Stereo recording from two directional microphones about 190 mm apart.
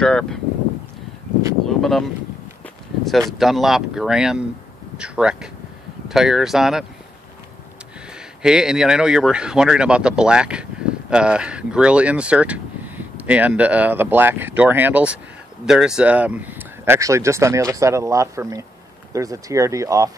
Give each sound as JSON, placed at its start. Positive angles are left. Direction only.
{"t": 0.0, "sound": "speech", "side_deg": 5}
{"t": 1.8, "sound": "speech", "side_deg": 0}
{"t": 3.1, "sound": "speech", "side_deg": 0}
{"t": 8.4, "sound": "speech", "side_deg": -5}